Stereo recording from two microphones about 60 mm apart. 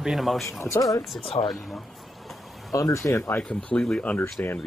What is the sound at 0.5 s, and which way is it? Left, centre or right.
Speech, left.